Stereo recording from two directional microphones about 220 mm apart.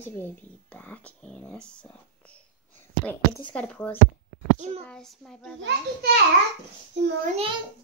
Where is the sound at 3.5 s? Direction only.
5° left (ahead or behind).